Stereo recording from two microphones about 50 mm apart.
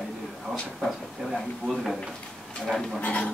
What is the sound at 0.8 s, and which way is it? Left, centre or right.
Speech, centre.